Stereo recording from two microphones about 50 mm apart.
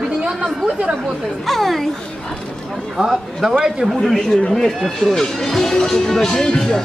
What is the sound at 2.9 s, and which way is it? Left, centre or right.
Speech, centre.